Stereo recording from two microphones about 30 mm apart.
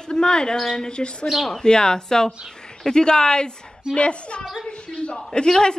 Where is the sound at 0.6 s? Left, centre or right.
Centre.